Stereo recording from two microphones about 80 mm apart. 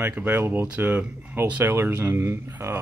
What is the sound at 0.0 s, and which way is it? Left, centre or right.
Speech, right.